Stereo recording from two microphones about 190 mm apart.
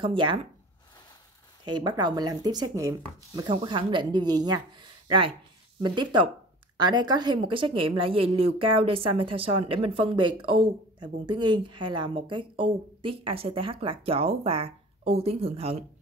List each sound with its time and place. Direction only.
0.0 s a woman's voice: 25° right (ahead or behind)
1.6 s a woman's voice: 20° right (ahead or behind)